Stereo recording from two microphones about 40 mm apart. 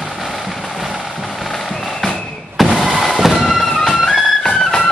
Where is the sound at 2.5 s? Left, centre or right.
Centre.